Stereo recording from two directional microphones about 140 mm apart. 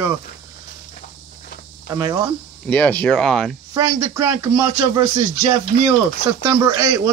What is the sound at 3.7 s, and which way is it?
Speech, 25° right (ahead or behind).